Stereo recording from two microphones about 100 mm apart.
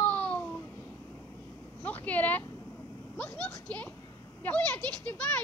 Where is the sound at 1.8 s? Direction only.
15° left (ahead or behind).